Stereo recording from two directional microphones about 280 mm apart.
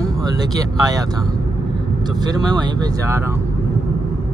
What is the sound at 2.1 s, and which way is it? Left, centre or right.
Speech, centre.